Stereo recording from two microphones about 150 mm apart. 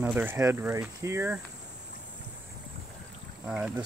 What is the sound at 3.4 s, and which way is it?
Speech, 5° right (ahead or behind).